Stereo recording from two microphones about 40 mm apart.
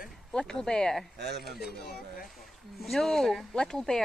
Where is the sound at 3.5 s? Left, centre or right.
Centre.